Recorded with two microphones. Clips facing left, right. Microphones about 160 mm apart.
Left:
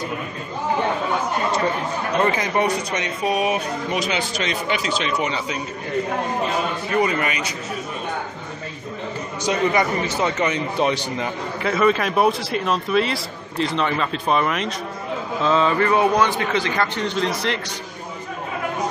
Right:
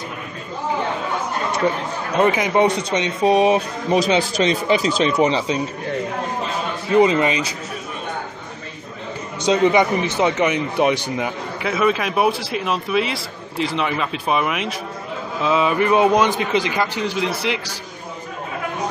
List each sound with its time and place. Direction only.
2.1 s speech: 15° right (ahead or behind); by 5.6 s 30° right (ahead or behind)
6.9 s a man's voice: 20° right (ahead or behind)
9.4 s a man's voice: 20° right (ahead or behind)